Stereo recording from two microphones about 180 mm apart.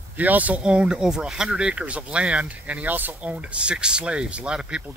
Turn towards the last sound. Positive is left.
turn(degrees=-5)  # may be behind; listen again after turning